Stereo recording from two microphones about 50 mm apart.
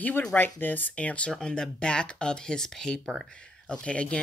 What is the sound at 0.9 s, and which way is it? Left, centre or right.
Speech, left.